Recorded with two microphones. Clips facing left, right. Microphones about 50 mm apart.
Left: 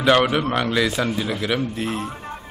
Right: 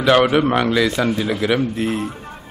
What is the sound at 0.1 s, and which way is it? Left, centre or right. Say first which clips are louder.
Speech: right 4 dB; centre.